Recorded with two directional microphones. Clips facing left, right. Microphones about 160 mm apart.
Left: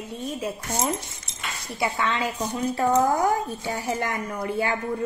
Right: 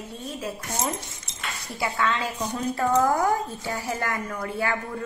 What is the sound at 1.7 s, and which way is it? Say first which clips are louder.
A woman's voice: left 1 dB; 20° left (ahead or behind).